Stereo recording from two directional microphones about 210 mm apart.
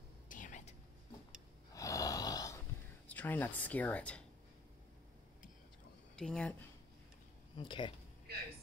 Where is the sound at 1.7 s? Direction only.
15° left (ahead or behind).